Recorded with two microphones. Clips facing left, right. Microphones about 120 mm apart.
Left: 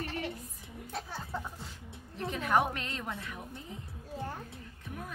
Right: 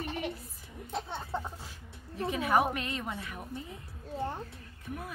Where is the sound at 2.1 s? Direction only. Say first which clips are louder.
Right 2 dB; 5° right (ahead or behind).